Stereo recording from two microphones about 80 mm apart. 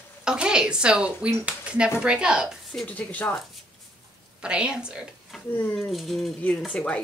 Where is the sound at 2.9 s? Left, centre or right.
Centre.